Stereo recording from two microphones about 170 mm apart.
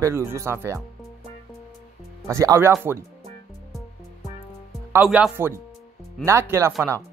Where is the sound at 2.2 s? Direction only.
15° right (ahead or behind).